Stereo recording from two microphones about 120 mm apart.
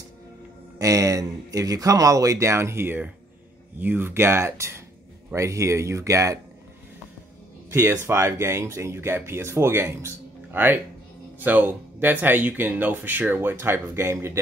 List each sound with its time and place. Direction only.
0.7 s speech: 30° right (ahead or behind)
7.7 s speech: 20° right (ahead or behind)